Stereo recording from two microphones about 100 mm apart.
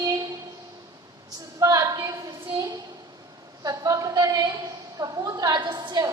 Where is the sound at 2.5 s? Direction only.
40° right (ahead or behind).